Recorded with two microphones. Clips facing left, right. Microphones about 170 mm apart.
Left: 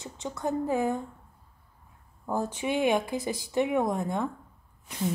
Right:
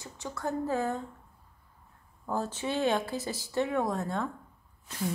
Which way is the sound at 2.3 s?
15° left (ahead or behind).